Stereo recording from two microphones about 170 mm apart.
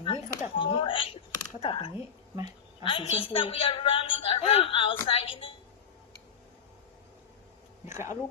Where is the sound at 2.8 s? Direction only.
30° left (ahead or behind).